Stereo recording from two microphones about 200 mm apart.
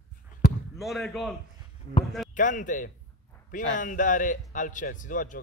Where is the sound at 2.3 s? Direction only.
40° left (ahead or behind).